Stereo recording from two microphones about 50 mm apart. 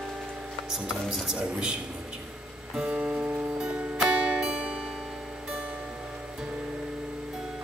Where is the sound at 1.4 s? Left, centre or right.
Centre.